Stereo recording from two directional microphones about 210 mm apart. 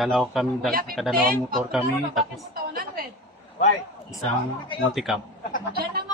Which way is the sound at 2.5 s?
45° right (ahead or behind).